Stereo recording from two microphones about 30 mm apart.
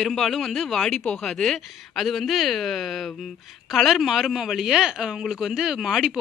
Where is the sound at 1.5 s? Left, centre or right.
Centre.